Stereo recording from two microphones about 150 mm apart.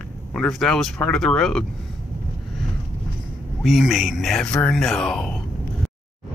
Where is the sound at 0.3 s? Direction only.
5° left (ahead or behind).